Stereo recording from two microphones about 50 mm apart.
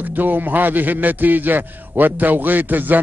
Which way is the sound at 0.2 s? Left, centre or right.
Right.